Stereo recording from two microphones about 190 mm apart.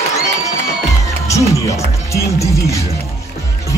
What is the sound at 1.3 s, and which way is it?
Speech, 15° left (ahead or behind).